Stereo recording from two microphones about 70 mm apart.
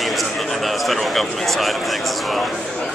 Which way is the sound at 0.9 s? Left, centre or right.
Centre.